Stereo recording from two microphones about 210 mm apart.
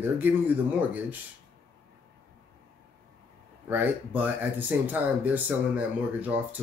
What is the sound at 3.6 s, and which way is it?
Speech, 10° right (ahead or behind).